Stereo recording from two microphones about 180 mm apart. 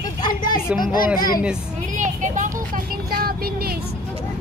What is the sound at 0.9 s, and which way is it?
Speech, 55° left (ahead or behind).